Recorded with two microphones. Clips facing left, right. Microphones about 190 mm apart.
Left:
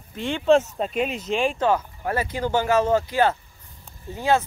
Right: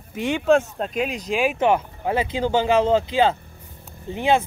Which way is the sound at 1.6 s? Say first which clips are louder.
Right 2 dB; 20° right (ahead or behind).